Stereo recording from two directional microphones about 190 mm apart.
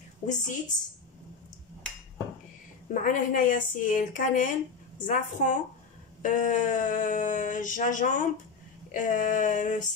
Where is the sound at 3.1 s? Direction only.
45° left (ahead or behind).